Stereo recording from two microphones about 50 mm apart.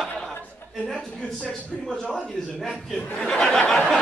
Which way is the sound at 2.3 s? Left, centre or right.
Centre.